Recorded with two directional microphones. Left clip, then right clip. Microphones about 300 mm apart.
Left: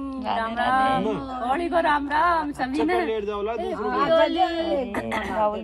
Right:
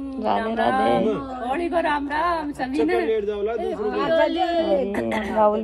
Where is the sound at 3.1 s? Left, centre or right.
Left.